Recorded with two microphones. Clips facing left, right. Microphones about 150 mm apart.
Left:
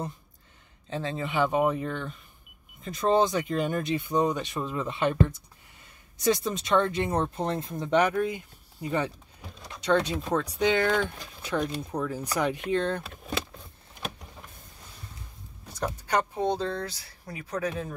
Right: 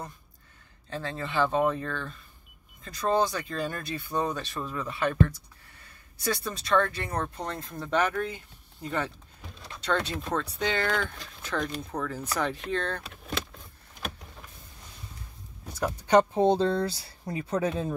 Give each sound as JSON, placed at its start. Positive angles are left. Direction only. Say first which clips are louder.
{"t": 0.8, "sound": "speech", "louder": "left 3 dB", "side_deg": 20}
{"t": 16.1, "sound": "speech", "louder": "right 7 dB", "side_deg": -25}